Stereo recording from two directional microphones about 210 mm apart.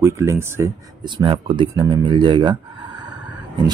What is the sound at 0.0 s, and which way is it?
Speech, 10° right (ahead or behind).